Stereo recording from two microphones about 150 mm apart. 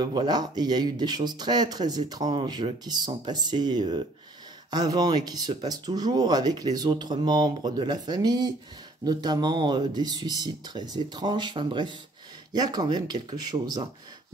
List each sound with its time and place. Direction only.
0.0 s speech: 30° right (ahead or behind)